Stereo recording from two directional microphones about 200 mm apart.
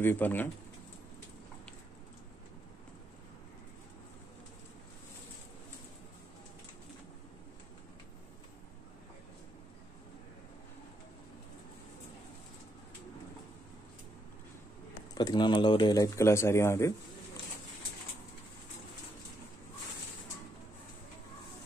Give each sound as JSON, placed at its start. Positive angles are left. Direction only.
{"t": 0.0, "sound": "a man's voice", "side_deg": 10}
{"t": 15.1, "sound": "a man's voice", "side_deg": 20}